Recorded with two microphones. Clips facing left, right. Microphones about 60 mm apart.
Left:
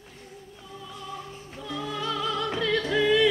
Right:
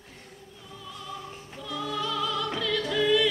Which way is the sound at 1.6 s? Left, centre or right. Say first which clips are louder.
Even; left.